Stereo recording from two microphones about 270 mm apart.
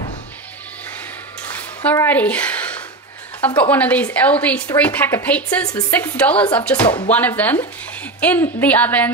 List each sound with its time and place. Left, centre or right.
1.5 s speech: centre